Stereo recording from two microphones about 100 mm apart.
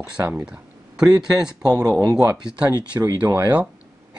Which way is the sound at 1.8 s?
40° right (ahead or behind).